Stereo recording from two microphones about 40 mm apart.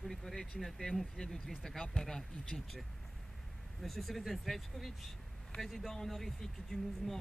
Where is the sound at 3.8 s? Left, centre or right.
Centre.